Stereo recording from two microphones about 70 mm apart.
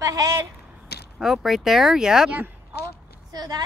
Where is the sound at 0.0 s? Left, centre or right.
Right.